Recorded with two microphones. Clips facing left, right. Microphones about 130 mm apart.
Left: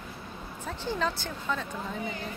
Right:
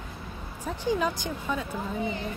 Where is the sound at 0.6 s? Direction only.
15° right (ahead or behind).